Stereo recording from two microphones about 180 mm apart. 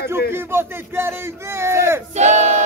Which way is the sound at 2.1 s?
40° right (ahead or behind).